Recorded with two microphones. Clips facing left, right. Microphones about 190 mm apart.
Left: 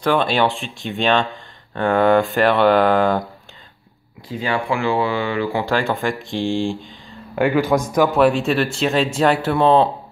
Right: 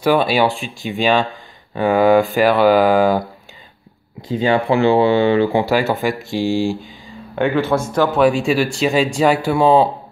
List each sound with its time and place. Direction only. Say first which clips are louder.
0.0 s speech: right 3 dB; 5° right (ahead or behind)
4.3 s speech: right 6 dB; 25° right (ahead or behind)
5.7 s speech: right 3 dB; 5° right (ahead or behind)
7.3 s speech: even; 10° left (ahead or behind)
8.1 s speech: right 1 dB; centre (ahead or behind)